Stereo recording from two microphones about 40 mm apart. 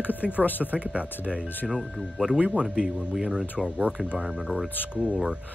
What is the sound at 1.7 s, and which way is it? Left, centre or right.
Speech, centre.